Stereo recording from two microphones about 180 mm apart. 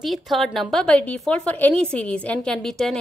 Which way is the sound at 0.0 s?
Centre (ahead or behind).